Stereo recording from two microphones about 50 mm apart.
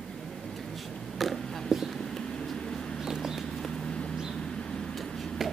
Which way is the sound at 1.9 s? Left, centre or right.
Centre.